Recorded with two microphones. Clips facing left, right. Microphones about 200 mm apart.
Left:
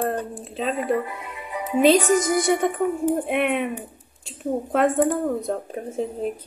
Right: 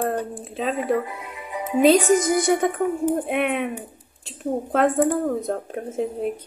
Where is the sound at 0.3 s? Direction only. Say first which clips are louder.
Right 1 dB; 5° right (ahead or behind).